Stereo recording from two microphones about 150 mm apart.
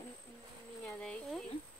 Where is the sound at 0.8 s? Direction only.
5° left (ahead or behind).